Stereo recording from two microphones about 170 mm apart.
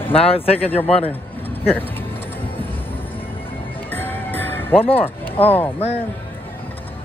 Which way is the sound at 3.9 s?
10° left (ahead or behind).